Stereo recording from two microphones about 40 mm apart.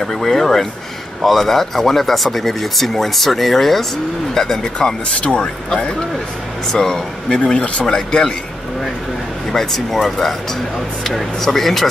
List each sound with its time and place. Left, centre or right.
0.0 s speech: centre
4.7 s speech: left
7.2 s speech: left
9.5 s speech: centre